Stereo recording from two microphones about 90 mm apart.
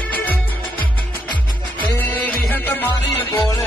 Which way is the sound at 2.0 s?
20° left (ahead or behind).